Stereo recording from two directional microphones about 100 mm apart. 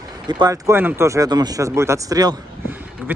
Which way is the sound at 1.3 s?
40° right (ahead or behind).